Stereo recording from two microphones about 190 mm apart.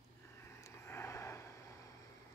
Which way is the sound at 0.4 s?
15° left (ahead or behind).